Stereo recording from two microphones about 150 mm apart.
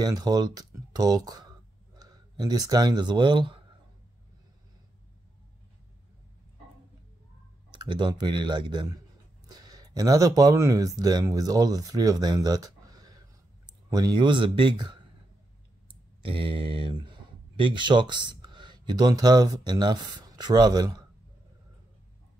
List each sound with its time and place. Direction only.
0.0 s speech: 25° right (ahead or behind)
7.7 s speech: 30° right (ahead or behind)